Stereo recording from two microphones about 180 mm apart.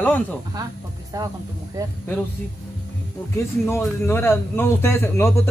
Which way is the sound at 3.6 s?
15° left (ahead or behind).